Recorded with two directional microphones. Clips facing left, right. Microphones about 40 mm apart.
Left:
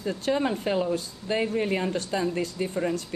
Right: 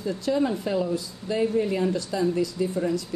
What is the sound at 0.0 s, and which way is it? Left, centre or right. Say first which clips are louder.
Speech: right 1 dB; left.